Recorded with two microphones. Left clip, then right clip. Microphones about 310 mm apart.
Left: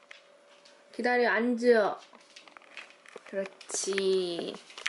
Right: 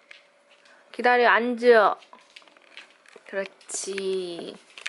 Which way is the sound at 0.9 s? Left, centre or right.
Centre.